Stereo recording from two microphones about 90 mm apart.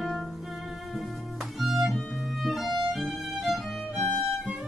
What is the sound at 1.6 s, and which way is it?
Violin, centre (ahead or behind).